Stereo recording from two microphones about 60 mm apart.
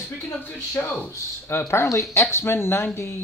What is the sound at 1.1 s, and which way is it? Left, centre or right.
Speech, left.